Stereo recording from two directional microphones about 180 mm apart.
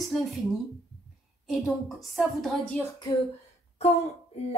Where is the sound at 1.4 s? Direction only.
Centre (ahead or behind).